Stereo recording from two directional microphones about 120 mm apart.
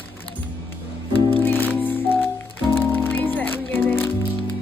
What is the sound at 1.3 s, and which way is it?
Music, 15° left (ahead or behind).